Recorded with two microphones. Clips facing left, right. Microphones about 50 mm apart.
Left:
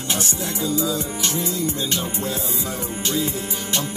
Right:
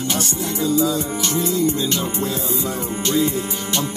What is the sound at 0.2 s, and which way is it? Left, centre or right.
Music, right.